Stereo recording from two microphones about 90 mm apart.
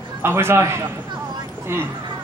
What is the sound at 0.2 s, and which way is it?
Speech, 25° right (ahead or behind).